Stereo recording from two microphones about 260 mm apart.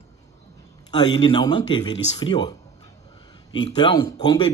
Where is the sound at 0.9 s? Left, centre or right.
Centre.